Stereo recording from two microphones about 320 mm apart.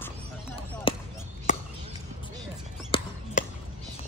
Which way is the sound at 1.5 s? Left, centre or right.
Left.